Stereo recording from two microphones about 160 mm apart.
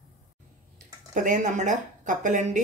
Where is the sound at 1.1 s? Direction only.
55° right (ahead or behind).